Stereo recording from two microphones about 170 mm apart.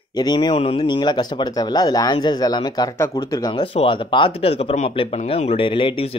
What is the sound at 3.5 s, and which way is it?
Speech, 35° left (ahead or behind).